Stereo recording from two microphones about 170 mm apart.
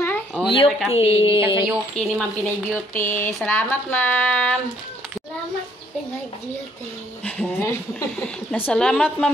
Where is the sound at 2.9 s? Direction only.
15° left (ahead or behind).